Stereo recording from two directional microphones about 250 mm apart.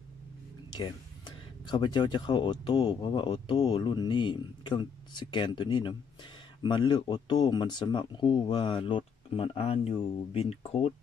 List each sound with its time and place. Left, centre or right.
0.7 s speech: centre